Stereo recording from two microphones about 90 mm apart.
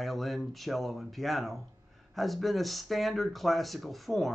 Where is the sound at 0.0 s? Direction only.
Centre (ahead or behind).